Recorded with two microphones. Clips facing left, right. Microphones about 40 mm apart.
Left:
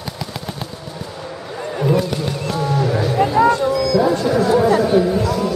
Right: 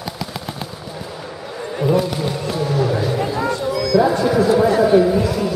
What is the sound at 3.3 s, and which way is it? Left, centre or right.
Music, left.